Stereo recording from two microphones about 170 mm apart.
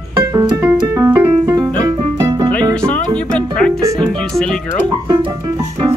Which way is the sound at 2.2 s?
20° right (ahead or behind).